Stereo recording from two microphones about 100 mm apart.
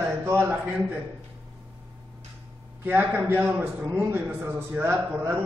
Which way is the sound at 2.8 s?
20° right (ahead or behind).